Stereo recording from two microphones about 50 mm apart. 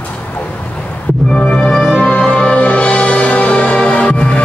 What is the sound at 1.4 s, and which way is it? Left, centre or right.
Music, left.